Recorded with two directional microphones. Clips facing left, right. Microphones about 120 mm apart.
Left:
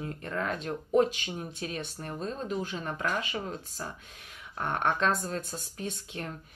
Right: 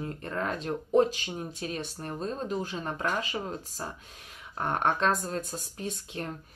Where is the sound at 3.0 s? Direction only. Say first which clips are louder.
Right 1 dB; 25° right (ahead or behind).